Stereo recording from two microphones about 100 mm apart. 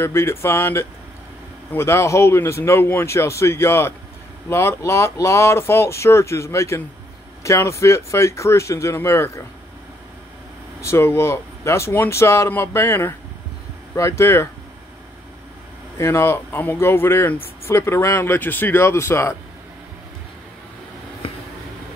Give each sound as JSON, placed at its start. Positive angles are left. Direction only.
{"t": 0.0, "sound": "speech", "side_deg": 25}
{"t": 10.8, "sound": "speech", "side_deg": 25}
{"t": 16.0, "sound": "speech", "side_deg": 25}
{"t": 21.2, "sound": "a sound", "side_deg": 70}